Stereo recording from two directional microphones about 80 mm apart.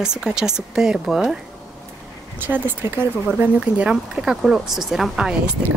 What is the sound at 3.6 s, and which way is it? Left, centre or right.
Speech, centre.